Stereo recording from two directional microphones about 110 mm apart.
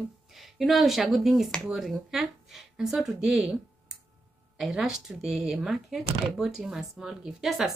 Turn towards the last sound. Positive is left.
turn(degrees=-5)  # may be behind; listen again after turning